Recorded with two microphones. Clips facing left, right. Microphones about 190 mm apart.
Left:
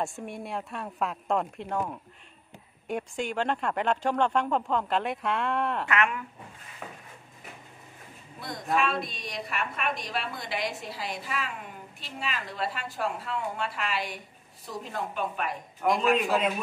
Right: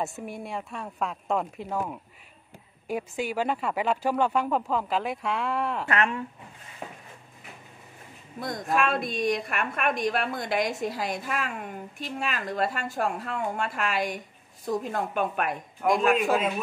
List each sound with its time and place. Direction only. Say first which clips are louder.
0.0 s speech: right 1 dB; centre (ahead or behind)
5.9 s speech: right 1 dB; 35° right (ahead or behind)
8.7 s a woman's voice: right 2 dB; 50° right (ahead or behind)
15.8 s speech: right 2 dB; centre (ahead or behind)